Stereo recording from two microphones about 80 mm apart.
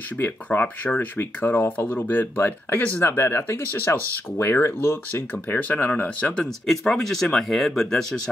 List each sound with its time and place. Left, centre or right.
0.2 s speech: left; by 8.1 s centre